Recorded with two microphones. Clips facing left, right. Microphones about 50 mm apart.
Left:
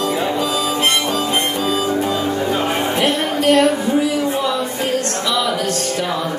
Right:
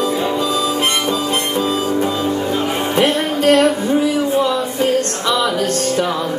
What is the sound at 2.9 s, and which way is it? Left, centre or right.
Music, right.